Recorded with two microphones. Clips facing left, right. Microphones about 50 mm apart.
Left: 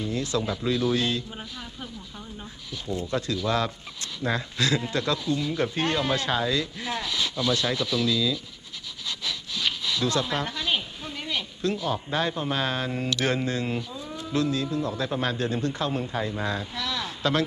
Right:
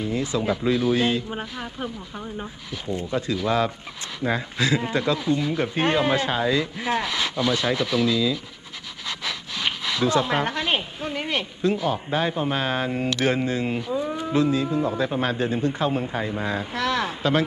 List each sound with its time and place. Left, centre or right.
0.0 s speech: centre
1.3 s speech: right
3.1 s speech: centre
5.2 s speech: right
9.0 s a sound: right
10.0 s speech: right
10.4 s a sound: right
11.6 s speech: centre
13.7 s livestock: right
14.3 s speech: centre
16.7 s a sound: right
17.2 s speech: centre